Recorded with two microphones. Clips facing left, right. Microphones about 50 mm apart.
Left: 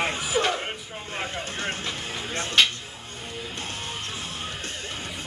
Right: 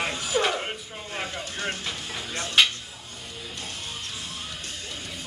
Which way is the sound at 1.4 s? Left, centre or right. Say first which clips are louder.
Left 1 dB; left.